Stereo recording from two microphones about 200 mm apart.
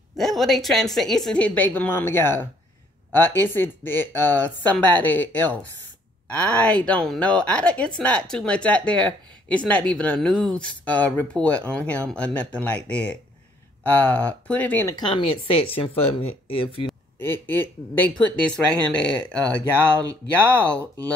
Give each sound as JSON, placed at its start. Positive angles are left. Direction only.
{"t": 0.1, "sound": "a woman's voice", "side_deg": 0}
{"t": 16.8, "sound": "speech", "side_deg": 10}